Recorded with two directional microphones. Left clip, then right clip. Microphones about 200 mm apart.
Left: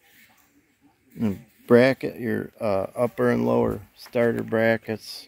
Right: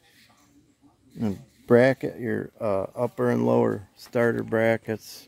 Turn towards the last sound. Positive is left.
turn(degrees=-15)  # may be behind; listen again after turning